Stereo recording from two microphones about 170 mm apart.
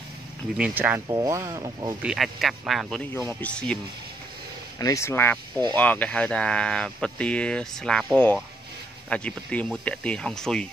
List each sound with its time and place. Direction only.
0.6 s speech: 10° right (ahead or behind)
1.0 s speech: 20° right (ahead or behind)
2.0 s speech: 5° right (ahead or behind)
3.3 s speech: 10° left (ahead or behind)
4.7 s speech: 20° left (ahead or behind); by 8.1 s 5° left (ahead or behind)
9.1 s speech: 5° left (ahead or behind)